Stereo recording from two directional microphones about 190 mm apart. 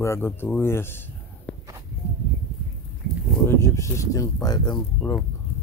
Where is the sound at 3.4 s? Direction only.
15° left (ahead or behind).